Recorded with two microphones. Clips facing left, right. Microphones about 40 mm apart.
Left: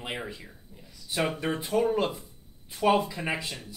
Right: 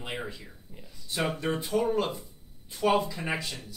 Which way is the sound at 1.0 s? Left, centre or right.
Centre.